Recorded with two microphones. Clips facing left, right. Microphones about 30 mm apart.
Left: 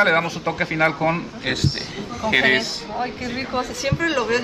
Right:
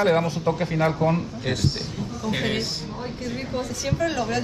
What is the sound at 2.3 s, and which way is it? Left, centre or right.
A woman's voice, left.